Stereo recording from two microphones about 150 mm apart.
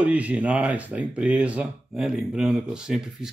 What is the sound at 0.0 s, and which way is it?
Speech, 10° right (ahead or behind).